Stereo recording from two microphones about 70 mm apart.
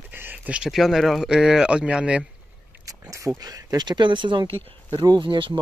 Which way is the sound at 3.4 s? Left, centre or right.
Right.